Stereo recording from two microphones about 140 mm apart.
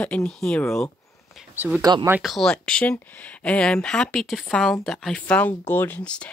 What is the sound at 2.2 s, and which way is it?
Speech, centre (ahead or behind).